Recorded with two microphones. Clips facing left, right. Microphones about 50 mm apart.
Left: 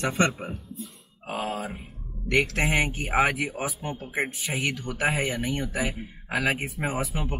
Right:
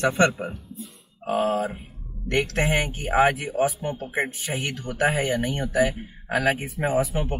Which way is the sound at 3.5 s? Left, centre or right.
Left.